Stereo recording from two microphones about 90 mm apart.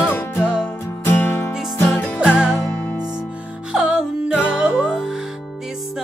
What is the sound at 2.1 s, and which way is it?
Music, 10° right (ahead or behind).